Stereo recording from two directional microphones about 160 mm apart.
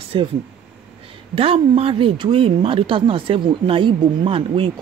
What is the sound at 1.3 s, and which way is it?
A woman's voice, 35° right (ahead or behind).